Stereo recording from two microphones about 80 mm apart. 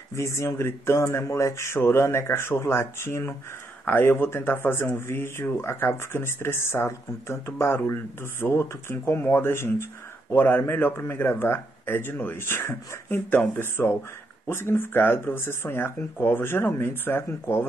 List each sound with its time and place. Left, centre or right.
0.1 s speech: left